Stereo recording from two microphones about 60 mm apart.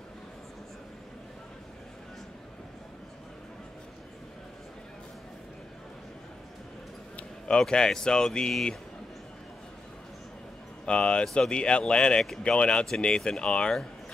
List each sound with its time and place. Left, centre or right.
7.2 s speech: centre
10.9 s speech: centre